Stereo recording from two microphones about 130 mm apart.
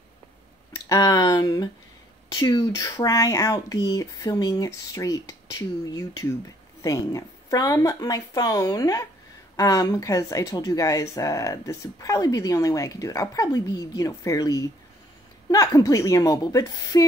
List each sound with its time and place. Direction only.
0.7 s speech: 30° left (ahead or behind)